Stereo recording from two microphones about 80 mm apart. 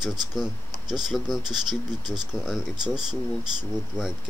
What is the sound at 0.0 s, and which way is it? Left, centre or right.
Speech, centre.